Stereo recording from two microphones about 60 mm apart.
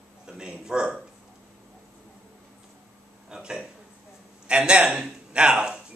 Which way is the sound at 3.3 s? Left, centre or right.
Centre.